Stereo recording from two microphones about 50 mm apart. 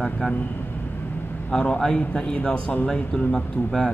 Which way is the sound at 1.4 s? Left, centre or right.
Left.